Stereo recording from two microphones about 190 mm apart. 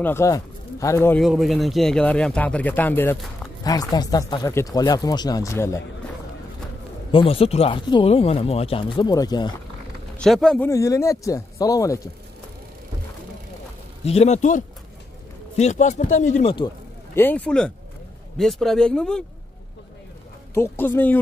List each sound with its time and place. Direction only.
0.0 s speech: 15° left (ahead or behind)
1.2 s speech: centre (ahead or behind); by 5.8 s 15° left (ahead or behind)
7.1 s speech: 30° left (ahead or behind)
10.2 s speech: 5° left (ahead or behind)
10.7 s speech: 15° left (ahead or behind)
14.0 s speech: 35° left (ahead or behind)
17.1 s speech: 10° left (ahead or behind)
20.5 s speech: 10° left (ahead or behind)